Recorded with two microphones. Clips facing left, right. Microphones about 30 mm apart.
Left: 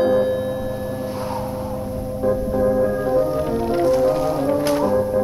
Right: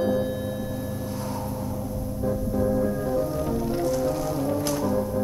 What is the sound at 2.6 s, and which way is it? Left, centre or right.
Music, left.